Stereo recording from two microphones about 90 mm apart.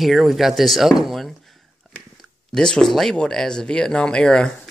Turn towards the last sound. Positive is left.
turn(degrees=10)  # may be behind; listen again after turning